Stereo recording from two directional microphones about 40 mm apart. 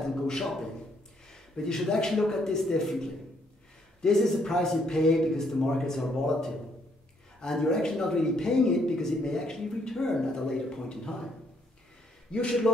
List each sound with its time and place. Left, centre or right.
0.0 s a sound: centre
1.3 s a man's voice: centre
7.5 s a man's voice: centre
12.3 s speech: left